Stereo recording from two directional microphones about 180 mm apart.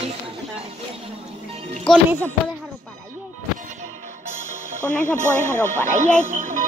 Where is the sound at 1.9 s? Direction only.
5° left (ahead or behind).